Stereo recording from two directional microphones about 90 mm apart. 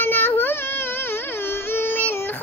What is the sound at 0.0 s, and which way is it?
Baby cry, 20° left (ahead or behind).